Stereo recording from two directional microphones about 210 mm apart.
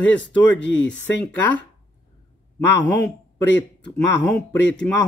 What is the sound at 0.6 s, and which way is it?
Speech, 60° left (ahead or behind).